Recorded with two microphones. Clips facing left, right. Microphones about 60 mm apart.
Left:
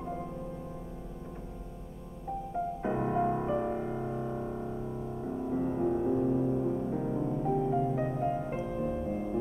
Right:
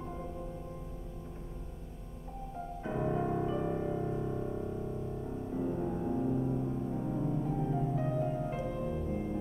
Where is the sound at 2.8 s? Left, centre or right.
Left.